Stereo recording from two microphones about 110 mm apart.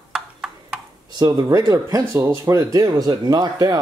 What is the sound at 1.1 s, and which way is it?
Speech, 35° right (ahead or behind).